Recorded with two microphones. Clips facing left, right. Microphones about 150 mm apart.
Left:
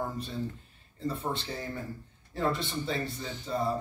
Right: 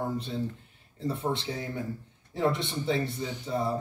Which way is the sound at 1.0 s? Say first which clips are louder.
Right 3 dB; 25° right (ahead or behind).